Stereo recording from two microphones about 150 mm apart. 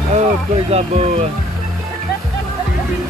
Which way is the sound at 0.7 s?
45° right (ahead or behind).